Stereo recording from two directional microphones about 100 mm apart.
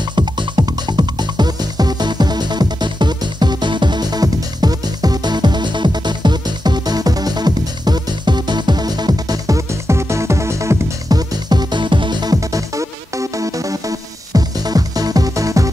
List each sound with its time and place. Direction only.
0.1 s music: 50° right (ahead or behind); by 15.7 s 35° right (ahead or behind)